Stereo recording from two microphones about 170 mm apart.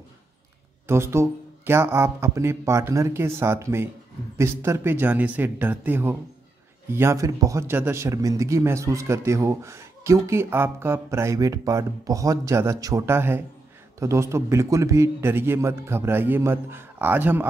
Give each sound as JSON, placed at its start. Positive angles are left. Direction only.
{"t": 0.8, "sound": "speech", "side_deg": -15}